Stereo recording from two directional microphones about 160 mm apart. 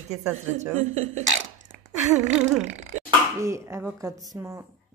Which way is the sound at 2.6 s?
45° right (ahead or behind).